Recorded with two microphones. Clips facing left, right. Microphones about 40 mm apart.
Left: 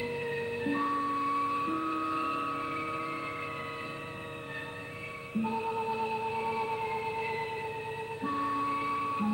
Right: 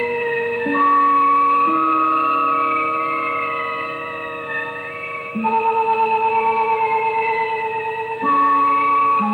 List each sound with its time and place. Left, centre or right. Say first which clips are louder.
0.0 s music: right 14 dB; right
5.4 s music: right 15 dB; right